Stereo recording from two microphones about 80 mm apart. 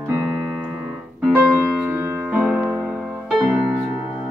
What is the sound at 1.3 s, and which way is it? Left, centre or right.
Music, right.